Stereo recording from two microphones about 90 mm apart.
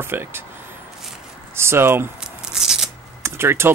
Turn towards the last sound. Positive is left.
turn(degrees=-25)  # may be behind; listen again after turning